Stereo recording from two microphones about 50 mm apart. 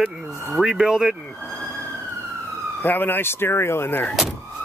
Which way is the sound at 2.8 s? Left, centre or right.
Left.